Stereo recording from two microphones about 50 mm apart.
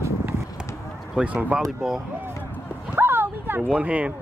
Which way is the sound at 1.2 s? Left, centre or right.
Right.